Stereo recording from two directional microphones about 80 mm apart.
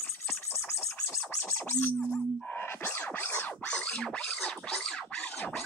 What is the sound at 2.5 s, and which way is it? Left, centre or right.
Music, left.